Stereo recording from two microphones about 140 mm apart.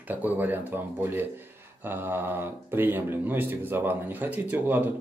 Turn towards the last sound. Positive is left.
turn(degrees=-10)  # may be behind; listen again after turning